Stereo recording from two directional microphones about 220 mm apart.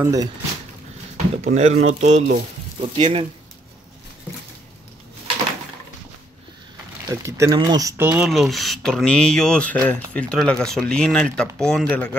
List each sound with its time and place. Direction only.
0.0 s speech: 15° right (ahead or behind)
1.1 s speech: 30° right (ahead or behind)
7.1 s speech: 15° right (ahead or behind); by 12.2 s 5° left (ahead or behind)